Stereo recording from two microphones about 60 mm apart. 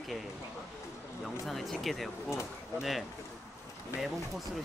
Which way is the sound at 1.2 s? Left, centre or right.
Centre.